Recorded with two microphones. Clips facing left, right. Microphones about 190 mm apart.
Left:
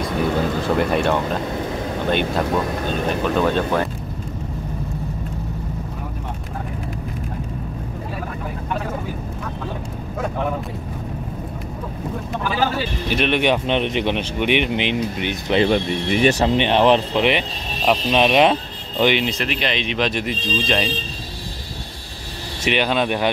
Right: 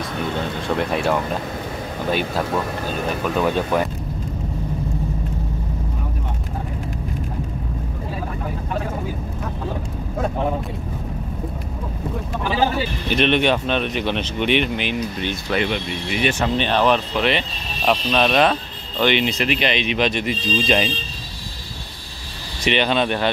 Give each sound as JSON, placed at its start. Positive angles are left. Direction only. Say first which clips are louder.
{"t": 0.6, "sound": "speech", "louder": "left 3 dB", "side_deg": 0}
{"t": 13.1, "sound": "speech", "louder": "right 1 dB", "side_deg": 10}
{"t": 15.6, "sound": "speech", "louder": "left 6 dB", "side_deg": 40}
{"t": 16.4, "sound": "speech", "louder": "even", "side_deg": 20}
{"t": 19.1, "sound": "speech", "louder": "right 2 dB", "side_deg": 0}
{"t": 22.7, "sound": "speech", "louder": "even", "side_deg": 5}